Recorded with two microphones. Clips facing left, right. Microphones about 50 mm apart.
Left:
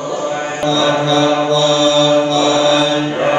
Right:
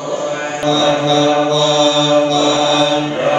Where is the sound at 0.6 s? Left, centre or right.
Left.